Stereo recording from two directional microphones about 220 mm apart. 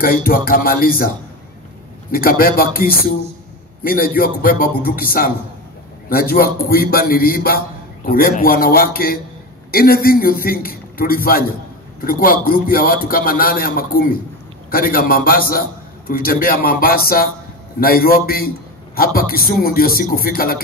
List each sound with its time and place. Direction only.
0.0 s a man's voice: 40° left (ahead or behind)